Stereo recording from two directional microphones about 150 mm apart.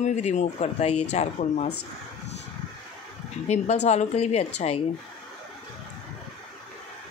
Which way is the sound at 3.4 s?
50° left (ahead or behind).